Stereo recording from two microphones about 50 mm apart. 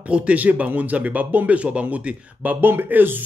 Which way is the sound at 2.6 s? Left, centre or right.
Right.